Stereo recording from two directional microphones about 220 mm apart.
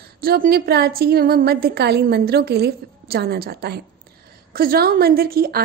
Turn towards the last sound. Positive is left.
turn(degrees=-45)  # may be behind; listen again after turning